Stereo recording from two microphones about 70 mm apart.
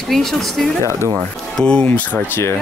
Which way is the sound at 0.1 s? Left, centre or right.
Centre.